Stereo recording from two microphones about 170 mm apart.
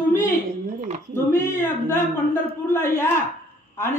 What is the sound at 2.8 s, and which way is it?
Speech, 15° left (ahead or behind).